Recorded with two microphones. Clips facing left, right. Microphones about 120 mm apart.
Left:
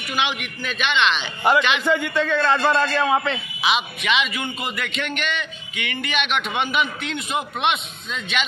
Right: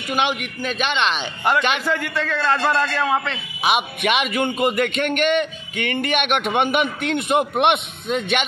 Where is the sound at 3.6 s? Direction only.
50° right (ahead or behind).